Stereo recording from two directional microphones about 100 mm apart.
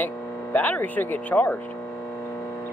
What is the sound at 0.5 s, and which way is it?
Speech, 15° left (ahead or behind).